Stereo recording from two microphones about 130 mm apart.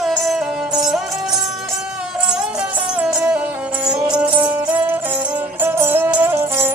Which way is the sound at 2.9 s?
10° right (ahead or behind).